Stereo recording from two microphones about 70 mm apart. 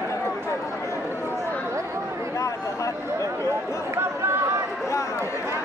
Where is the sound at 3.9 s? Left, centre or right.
Right.